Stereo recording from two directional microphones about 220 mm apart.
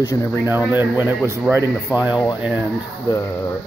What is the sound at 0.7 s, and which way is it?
Speech, 10° right (ahead or behind).